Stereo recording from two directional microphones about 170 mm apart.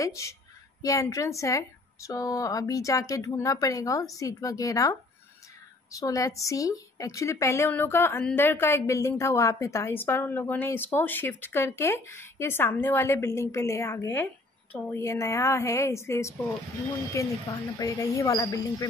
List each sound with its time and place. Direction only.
0.0 s a woman's voice: 20° left (ahead or behind)